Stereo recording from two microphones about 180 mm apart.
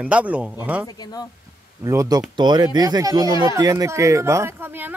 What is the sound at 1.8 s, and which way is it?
Speech, 20° right (ahead or behind).